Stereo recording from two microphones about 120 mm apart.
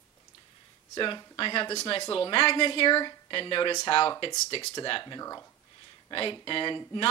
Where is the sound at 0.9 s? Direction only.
40° left (ahead or behind).